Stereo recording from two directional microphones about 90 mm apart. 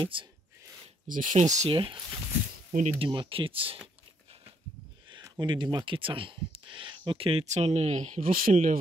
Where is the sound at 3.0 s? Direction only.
75° right (ahead or behind).